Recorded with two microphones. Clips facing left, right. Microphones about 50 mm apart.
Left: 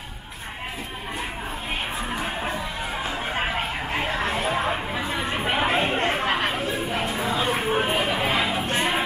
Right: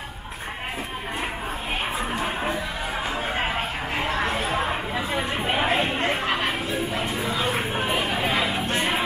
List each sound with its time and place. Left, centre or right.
4.5 s chatter: centre
5.6 s a sound: left
6.2 s chatter: left
7.7 s music: left